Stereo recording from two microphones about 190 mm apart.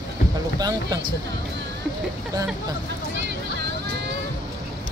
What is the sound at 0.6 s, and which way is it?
Speech, 20° right (ahead or behind).